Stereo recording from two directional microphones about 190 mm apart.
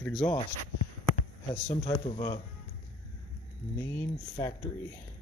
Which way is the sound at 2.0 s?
40° left (ahead or behind).